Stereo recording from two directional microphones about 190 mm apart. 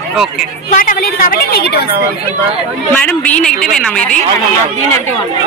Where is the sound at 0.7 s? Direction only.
45° left (ahead or behind).